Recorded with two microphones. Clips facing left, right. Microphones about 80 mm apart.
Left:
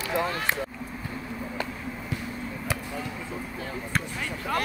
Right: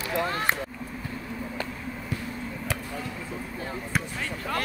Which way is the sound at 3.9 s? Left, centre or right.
Centre.